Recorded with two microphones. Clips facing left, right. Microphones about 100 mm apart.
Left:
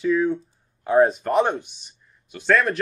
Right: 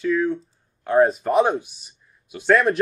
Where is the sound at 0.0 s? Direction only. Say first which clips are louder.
Left 1 dB; 5° left (ahead or behind).